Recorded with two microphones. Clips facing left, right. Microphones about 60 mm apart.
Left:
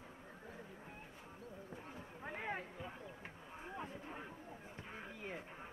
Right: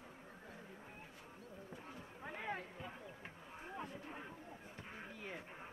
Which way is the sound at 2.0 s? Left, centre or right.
Left.